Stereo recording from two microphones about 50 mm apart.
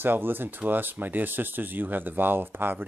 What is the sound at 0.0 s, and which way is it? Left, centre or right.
Speech, right.